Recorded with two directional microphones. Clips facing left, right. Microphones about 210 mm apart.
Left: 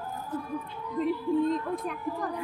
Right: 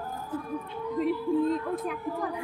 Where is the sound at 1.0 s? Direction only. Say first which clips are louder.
Even; 5° right (ahead or behind).